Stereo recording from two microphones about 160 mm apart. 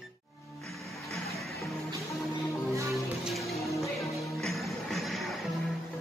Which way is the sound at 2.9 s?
Centre (ahead or behind).